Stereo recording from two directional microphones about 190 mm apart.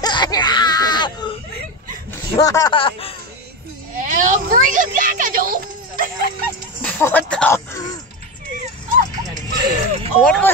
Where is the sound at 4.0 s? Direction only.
40° right (ahead or behind).